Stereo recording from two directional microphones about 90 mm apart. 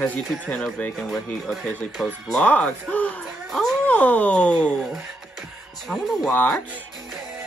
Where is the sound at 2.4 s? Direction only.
15° left (ahead or behind).